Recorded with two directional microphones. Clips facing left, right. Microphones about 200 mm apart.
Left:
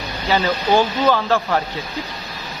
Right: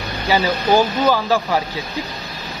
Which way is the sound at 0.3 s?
5° right (ahead or behind).